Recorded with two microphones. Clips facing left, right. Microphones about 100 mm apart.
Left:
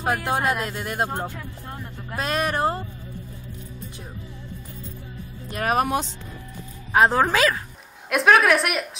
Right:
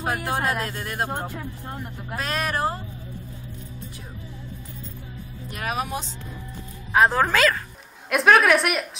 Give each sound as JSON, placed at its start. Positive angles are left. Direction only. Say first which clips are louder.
{"t": 0.0, "sound": "speech", "louder": "left 2 dB", "side_deg": 25}
{"t": 1.2, "sound": "speech", "louder": "even", "side_deg": -15}
{"t": 2.1, "sound": "speech", "louder": "left 2 dB", "side_deg": 25}
{"t": 5.6, "sound": "speech", "louder": "left 6 dB", "side_deg": 50}
{"t": 7.1, "sound": "speech", "louder": "left 1 dB", "side_deg": 20}
{"t": 8.1, "sound": "speech", "louder": "even", "side_deg": 0}